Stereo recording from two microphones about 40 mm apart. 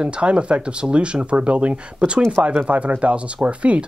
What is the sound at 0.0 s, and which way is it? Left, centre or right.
Speech, right.